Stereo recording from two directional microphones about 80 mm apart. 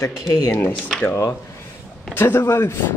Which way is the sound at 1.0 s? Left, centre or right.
Left.